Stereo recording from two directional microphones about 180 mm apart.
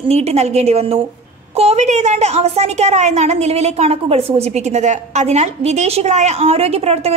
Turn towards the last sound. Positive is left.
turn(degrees=-35)  # may be behind; listen again after turning